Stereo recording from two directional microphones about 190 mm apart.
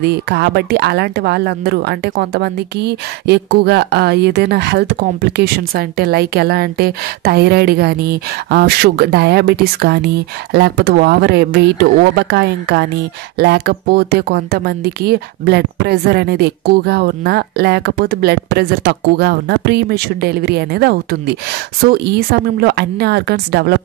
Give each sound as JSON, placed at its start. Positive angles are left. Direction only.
{"t": 0.0, "sound": "speech", "side_deg": -60}